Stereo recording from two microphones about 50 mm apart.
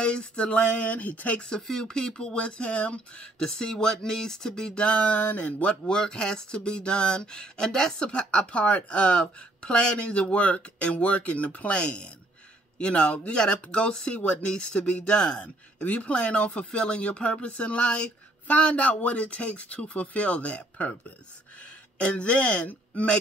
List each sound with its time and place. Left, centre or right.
0.0 s speech: left
1.4 s speech: centre; by 5.8 s left
5.9 s speech: centre
14.5 s speech: centre
15.4 s speech: left
21.9 s speech: left